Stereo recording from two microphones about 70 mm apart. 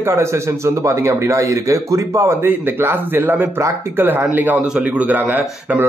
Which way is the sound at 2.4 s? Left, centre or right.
Right.